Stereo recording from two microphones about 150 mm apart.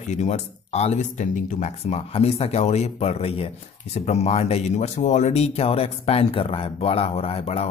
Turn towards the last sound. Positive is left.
turn(degrees=40)  # may be behind; listen again after turning